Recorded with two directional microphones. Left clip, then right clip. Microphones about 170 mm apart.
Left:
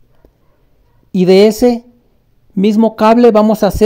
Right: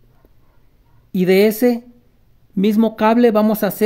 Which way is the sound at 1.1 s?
25° left (ahead or behind).